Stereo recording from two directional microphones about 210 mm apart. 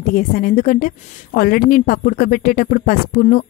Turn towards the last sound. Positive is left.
turn(degrees=40)  # may be behind; listen again after turning